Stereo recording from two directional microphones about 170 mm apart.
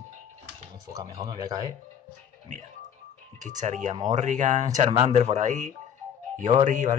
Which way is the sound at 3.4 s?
45° right (ahead or behind).